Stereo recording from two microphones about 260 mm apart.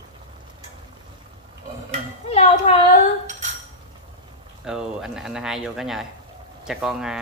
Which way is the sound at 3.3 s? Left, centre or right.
Right.